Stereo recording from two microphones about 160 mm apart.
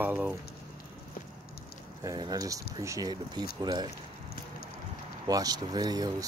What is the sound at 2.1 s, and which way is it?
Speech, 25° right (ahead or behind).